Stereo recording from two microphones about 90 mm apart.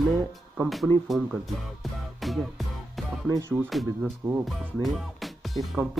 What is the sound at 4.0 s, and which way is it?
Speech, 20° right (ahead or behind).